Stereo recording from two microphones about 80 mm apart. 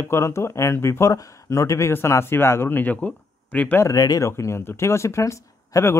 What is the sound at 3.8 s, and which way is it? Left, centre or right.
Speech, left.